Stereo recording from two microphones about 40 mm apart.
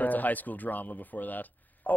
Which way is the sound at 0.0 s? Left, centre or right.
Left.